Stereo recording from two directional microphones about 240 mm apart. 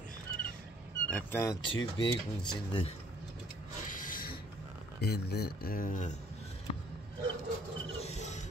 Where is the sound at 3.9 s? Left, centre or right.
Left.